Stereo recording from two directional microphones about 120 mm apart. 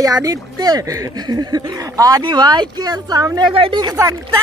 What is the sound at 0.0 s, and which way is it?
Speech, 30° right (ahead or behind).